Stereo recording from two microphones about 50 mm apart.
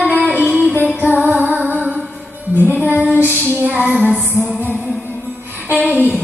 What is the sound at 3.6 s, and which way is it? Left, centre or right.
Child singing, right.